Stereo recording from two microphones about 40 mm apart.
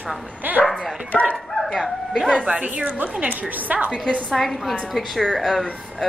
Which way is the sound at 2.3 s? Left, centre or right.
Right.